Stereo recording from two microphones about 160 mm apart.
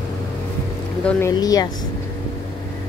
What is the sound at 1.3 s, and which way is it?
Speech, 25° left (ahead or behind).